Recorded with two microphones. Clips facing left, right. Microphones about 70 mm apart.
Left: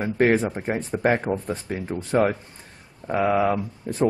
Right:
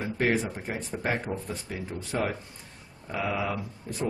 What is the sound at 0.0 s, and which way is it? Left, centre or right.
Speech, left.